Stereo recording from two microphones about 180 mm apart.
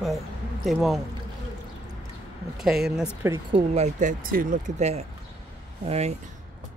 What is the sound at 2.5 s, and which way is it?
Speech, centre (ahead or behind).